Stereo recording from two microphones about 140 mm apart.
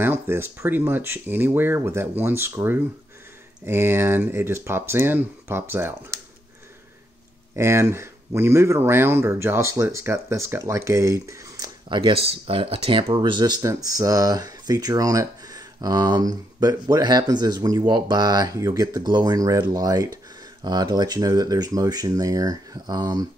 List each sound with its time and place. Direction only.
0.0 s speech: 15° right (ahead or behind)
7.5 s speech: 20° right (ahead or behind)
11.9 s speech: 40° right (ahead or behind)